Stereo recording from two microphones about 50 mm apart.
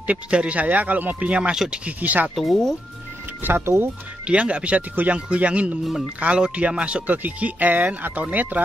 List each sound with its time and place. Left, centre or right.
0.0 s speech: right
1.5 s speech: centre
1.9 s speech: right
2.3 s speech: centre
3.4 s speech: right
4.3 s speech: right